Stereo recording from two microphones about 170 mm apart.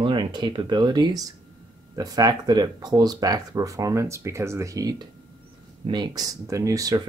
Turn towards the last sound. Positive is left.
turn(degrees=-20)  # may be behind; listen again after turning